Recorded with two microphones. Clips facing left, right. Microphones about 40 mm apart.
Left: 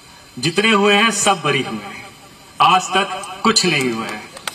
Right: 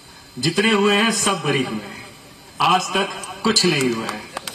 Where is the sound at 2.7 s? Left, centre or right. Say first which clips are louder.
Left 2 dB; left.